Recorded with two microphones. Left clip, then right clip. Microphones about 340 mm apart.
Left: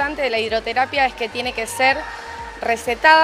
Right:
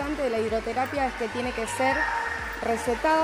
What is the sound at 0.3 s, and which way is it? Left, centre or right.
A woman's voice, left.